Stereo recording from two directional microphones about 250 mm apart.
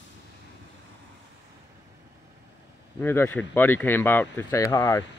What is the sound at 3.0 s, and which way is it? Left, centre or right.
Speech, centre.